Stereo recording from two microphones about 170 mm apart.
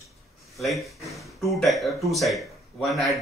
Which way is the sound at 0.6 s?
Centre (ahead or behind).